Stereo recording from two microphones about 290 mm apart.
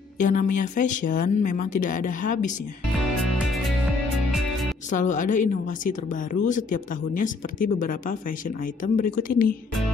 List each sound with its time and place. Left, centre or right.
0.2 s speech: left
4.8 s speech: left